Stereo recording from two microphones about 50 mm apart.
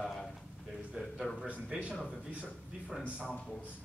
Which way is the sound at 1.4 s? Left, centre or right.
Right.